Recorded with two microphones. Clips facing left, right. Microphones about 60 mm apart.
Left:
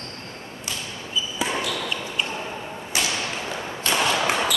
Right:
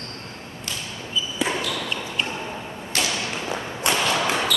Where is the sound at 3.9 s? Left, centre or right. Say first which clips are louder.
Right 1 dB; right.